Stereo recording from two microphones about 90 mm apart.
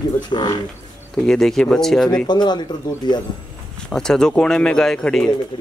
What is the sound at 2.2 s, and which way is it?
Speech, 55° left (ahead or behind).